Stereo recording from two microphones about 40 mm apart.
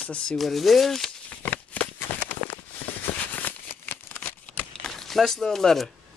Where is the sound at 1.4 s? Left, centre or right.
Left.